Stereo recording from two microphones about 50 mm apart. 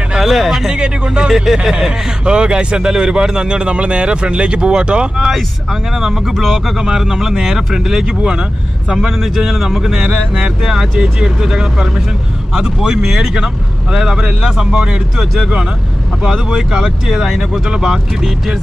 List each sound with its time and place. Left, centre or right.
0.2 s speech: centre
0.7 s speech: centre
1.3 s speech: centre
1.6 s speech: centre
5.1 s speech: centre
9.0 s speech: centre